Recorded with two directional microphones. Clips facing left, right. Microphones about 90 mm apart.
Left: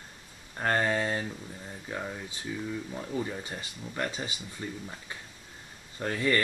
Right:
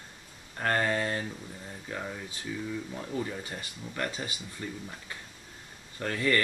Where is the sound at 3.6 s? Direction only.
20° left (ahead or behind).